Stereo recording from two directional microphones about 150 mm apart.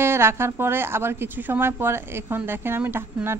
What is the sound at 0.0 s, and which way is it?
A woman's voice, 15° right (ahead or behind).